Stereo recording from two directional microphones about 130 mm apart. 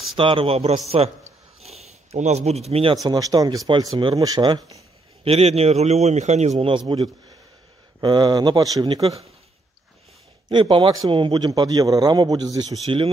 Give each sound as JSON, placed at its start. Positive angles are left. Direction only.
{"t": 0.1, "sound": "a man's voice", "side_deg": -40}
{"t": 3.0, "sound": "a man's voice", "side_deg": -30}
{"t": 5.2, "sound": "a man's voice", "side_deg": -50}
{"t": 8.0, "sound": "a man's voice", "side_deg": -35}
{"t": 10.5, "sound": "a man's voice", "side_deg": -40}
{"t": 12.8, "sound": "speech", "side_deg": -45}